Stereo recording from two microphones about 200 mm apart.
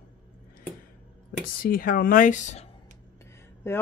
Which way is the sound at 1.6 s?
45° left (ahead or behind).